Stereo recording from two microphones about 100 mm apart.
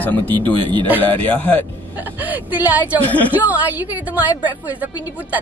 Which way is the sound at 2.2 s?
15° right (ahead or behind).